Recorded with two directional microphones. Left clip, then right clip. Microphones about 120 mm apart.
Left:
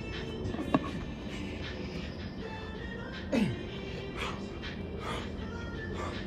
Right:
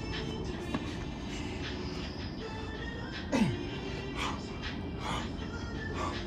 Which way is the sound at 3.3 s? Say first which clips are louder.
Even; 5° right (ahead or behind).